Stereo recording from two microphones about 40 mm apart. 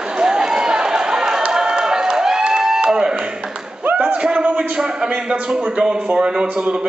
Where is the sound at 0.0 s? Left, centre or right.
Centre.